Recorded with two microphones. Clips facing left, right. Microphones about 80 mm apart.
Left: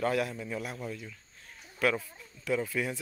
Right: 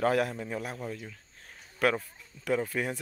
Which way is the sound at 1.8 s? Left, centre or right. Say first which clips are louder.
Right 2 dB; right.